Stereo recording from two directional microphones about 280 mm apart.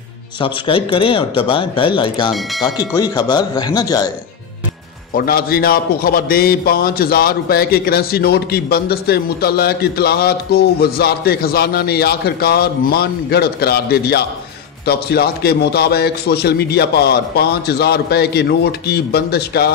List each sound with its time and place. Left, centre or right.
0.4 s a man's voice: centre
5.1 s a man's voice: left